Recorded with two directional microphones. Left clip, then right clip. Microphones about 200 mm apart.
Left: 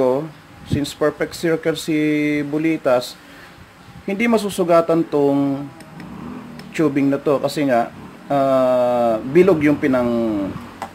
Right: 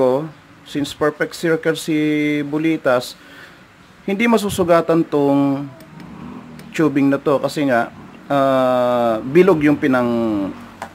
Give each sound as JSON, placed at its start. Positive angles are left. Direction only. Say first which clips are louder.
{"t": 0.7, "sound": "speech", "louder": "even", "side_deg": -20}
{"t": 6.7, "sound": "speech", "louder": "right 2 dB", "side_deg": -20}